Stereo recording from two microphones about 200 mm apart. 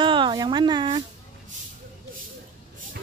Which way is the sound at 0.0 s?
25° right (ahead or behind).